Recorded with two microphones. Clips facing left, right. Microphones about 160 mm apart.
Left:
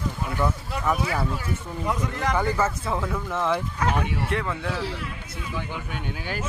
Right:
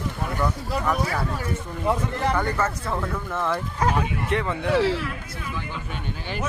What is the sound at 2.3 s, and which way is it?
Speech, 5° left (ahead or behind).